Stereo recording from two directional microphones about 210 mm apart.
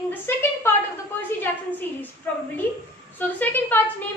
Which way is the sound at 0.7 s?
10° left (ahead or behind).